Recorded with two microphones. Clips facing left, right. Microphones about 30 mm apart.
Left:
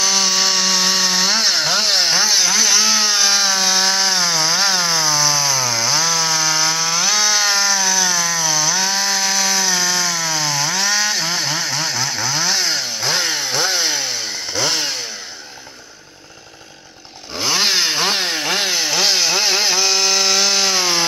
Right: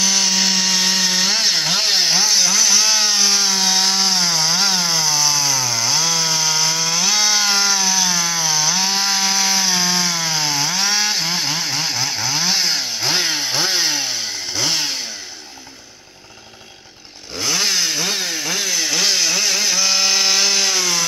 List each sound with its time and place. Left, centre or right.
0.0 s chainsaw: centre
11.2 s chainsaw: centre
17.4 s chainsaw: centre
18.0 s chainsaw: left
18.9 s chainsaw: centre
19.8 s chainsaw: centre
20.7 s wood: left